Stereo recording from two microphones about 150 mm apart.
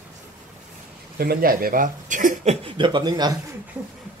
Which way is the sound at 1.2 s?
80° right.